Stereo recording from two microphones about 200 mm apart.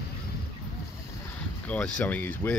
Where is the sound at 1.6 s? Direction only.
5° left (ahead or behind).